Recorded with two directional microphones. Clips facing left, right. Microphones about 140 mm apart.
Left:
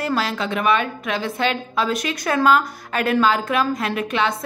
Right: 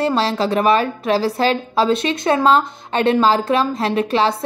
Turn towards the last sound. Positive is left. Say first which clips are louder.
# right 5 dB
turn(degrees=-30)  # may be behind; listen again after turning